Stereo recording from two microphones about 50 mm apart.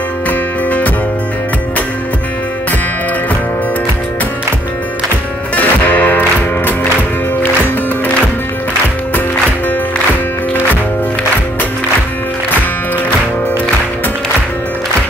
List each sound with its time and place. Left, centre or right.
0.3 s music: left
5.6 s music: left